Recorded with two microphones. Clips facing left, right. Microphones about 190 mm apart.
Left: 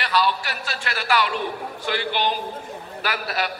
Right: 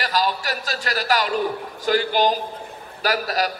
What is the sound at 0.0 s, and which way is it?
A man's voice, 40° right (ahead or behind).